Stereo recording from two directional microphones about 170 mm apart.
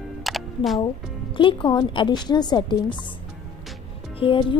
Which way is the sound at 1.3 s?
30° left (ahead or behind).